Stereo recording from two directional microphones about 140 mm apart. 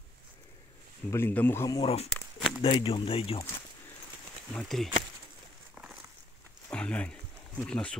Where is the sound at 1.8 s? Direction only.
45° left (ahead or behind).